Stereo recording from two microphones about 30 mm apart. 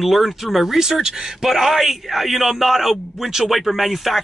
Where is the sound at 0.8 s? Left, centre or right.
Centre.